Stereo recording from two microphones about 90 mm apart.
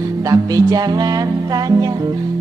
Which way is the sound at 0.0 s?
40° right (ahead or behind).